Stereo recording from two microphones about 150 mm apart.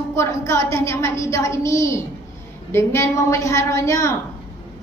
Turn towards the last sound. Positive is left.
turn(degrees=20)  # may be behind; listen again after turning